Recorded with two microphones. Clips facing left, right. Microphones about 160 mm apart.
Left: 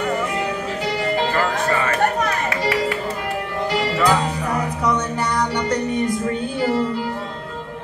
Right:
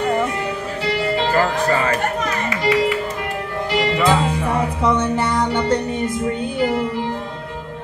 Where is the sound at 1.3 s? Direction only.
35° right (ahead or behind).